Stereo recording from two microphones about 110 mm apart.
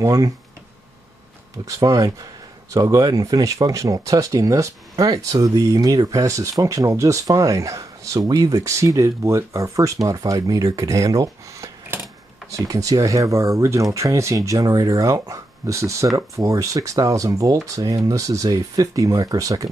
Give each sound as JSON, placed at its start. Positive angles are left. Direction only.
{"t": 0.0, "sound": "speech", "side_deg": -35}
{"t": 1.7, "sound": "speech", "side_deg": -30}